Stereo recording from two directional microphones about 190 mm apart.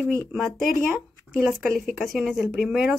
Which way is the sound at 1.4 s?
Centre (ahead or behind).